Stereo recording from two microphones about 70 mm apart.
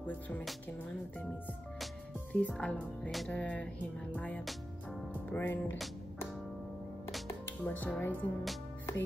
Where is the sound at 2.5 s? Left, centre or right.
Centre.